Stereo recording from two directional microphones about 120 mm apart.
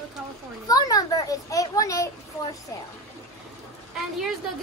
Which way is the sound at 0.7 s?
30° left (ahead or behind).